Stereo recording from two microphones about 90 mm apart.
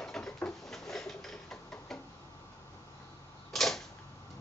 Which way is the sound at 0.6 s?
5° left (ahead or behind).